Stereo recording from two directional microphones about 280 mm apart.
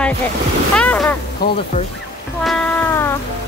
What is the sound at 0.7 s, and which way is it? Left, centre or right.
Speech, centre.